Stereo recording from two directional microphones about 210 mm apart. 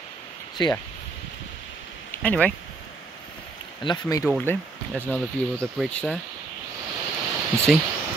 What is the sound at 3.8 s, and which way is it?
Speech, 20° left (ahead or behind).